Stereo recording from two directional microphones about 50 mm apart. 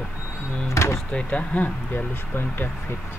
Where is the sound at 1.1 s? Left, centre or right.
Left.